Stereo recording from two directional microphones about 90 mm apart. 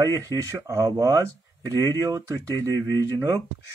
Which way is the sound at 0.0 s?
40° right (ahead or behind).